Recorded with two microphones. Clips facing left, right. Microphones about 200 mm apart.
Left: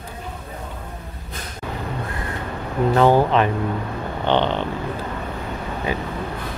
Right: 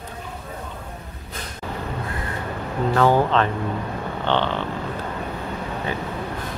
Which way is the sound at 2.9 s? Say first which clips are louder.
Left 2 dB; 15° left (ahead or behind).